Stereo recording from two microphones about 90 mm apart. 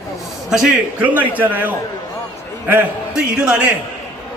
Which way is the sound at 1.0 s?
20° right (ahead or behind).